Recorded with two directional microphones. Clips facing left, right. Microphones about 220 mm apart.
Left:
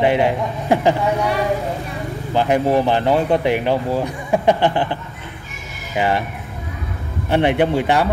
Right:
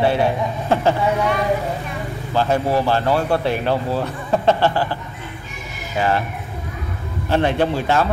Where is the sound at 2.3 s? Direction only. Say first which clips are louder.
Left 2 dB; 15° left (ahead or behind).